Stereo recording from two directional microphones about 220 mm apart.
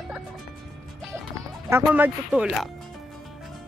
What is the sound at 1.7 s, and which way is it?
Speech, 10° right (ahead or behind).